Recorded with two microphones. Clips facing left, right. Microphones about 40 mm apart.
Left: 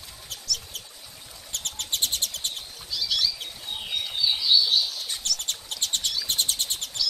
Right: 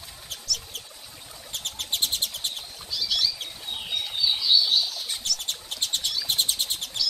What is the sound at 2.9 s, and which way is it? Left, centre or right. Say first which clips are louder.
Bird flight: even; centre.